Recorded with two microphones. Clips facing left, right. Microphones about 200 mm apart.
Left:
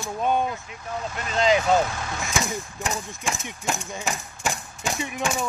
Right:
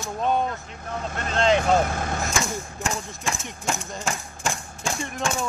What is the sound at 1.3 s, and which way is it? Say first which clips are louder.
Speech: even; 5° left (ahead or behind).